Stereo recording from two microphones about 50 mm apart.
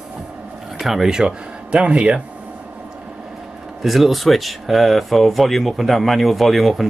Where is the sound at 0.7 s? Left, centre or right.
Centre; by 2.2 s right.